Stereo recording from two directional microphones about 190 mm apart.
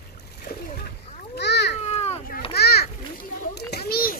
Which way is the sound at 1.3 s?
60° left (ahead or behind).